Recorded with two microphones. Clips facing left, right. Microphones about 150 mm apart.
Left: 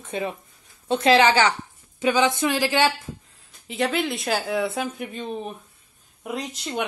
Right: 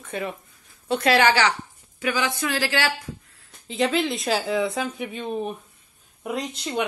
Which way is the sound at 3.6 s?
Centre (ahead or behind).